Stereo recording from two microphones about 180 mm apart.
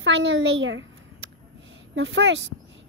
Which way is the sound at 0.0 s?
90° right.